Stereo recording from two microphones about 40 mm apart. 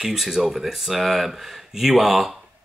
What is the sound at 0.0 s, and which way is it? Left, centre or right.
Speech, centre.